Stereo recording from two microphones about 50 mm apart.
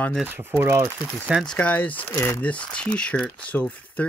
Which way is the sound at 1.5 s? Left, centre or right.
Left.